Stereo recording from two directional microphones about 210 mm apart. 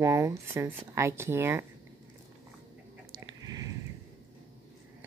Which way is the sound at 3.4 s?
15° right (ahead or behind).